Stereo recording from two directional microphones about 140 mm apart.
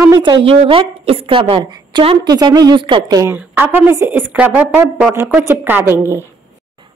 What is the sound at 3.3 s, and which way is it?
A woman's voice, 15° right (ahead or behind).